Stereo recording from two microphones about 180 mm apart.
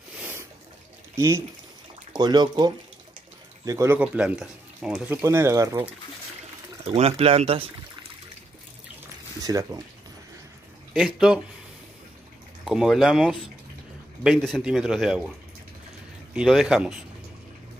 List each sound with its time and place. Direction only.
0.2 s a sound: 10° right (ahead or behind)
1.1 s speech: 15° right (ahead or behind)
6.8 s speech: 35° right (ahead or behind)
9.4 s speech: 20° right (ahead or behind)
10.9 s a man's voice: centre (ahead or behind)
12.6 s a man's voice: centre (ahead or behind)
16.3 s a man's voice: centre (ahead or behind)